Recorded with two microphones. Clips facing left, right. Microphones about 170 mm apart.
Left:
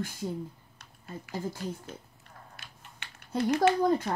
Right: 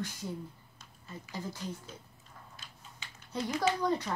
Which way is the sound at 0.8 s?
60° left (ahead or behind).